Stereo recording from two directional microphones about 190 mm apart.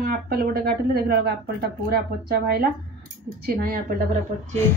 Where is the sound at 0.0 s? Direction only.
50° right (ahead or behind).